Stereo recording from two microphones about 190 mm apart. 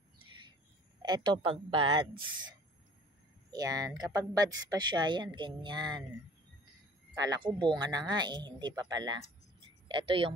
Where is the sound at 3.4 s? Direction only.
20° right (ahead or behind).